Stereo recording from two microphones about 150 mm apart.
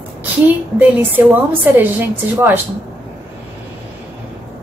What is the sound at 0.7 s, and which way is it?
A woman's voice, 10° right (ahead or behind).